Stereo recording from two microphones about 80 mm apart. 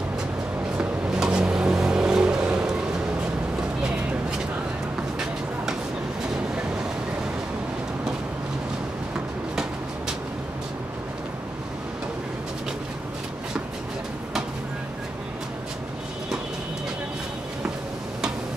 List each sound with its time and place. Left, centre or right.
0.7 s music: centre